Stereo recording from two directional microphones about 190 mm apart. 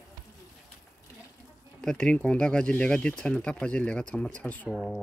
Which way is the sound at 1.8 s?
5° left (ahead or behind).